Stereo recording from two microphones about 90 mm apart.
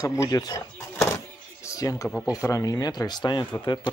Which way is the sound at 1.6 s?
40° left (ahead or behind).